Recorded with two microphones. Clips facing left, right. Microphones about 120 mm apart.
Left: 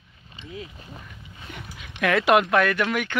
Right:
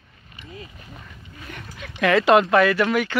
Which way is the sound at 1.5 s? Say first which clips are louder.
Right 1 dB; 10° left (ahead or behind).